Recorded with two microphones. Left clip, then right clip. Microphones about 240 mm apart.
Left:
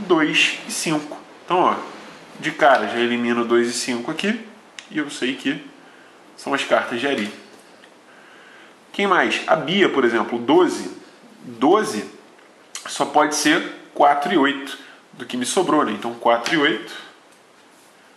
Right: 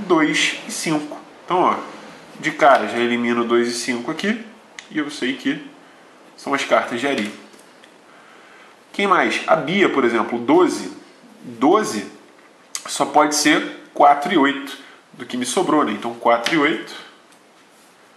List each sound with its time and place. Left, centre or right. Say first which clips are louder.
0.1 s speech: even; centre
8.9 s speech: right 1 dB; centre
12.9 s speech: right 2 dB; centre